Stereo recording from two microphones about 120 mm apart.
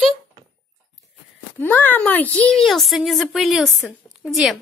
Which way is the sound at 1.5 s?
15° left (ahead or behind).